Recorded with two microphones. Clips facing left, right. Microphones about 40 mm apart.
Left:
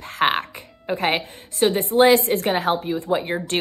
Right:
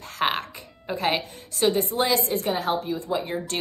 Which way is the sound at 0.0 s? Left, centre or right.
Left.